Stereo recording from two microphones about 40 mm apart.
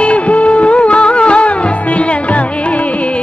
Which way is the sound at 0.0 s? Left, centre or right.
Left.